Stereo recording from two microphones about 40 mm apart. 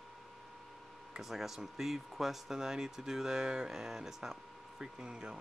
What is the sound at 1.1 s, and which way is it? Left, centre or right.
Speech, centre.